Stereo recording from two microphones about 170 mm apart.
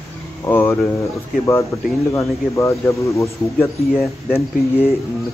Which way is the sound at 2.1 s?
15° left (ahead or behind).